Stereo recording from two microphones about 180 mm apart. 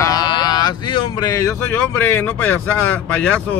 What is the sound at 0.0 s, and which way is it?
Speech, 20° left (ahead or behind).